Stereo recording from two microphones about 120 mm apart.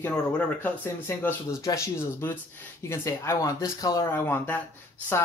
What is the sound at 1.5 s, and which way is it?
Speech, 25° left (ahead or behind).